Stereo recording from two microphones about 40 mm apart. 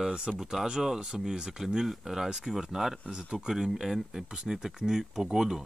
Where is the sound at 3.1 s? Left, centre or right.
Right.